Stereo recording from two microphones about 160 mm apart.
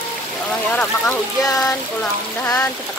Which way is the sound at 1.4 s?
20° left (ahead or behind).